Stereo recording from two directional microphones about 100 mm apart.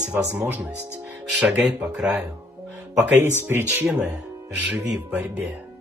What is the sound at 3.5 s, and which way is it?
A man's voice, 20° right (ahead or behind).